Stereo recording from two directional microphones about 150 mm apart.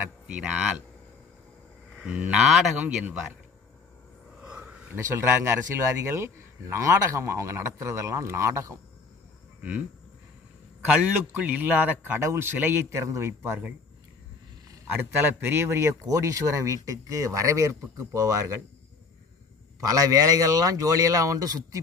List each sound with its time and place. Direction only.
0.0 s a man's voice: 5° right (ahead or behind)
2.0 s a man's voice: 10° right (ahead or behind)
4.4 s a sound: 5° right (ahead or behind)
5.1 s a man's voice: 15° right (ahead or behind)
9.6 s goat: 10° right (ahead or behind)
10.9 s a man's voice: 10° right (ahead or behind)
19.8 s a man's voice: 25° right (ahead or behind)